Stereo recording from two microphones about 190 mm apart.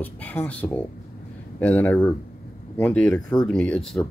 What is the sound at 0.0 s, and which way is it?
Speech, 10° left (ahead or behind).